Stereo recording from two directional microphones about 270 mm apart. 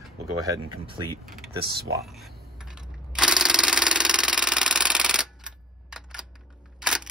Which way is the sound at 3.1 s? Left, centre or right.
Centre.